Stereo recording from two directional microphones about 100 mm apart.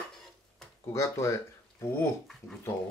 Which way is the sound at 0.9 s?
30° left (ahead or behind).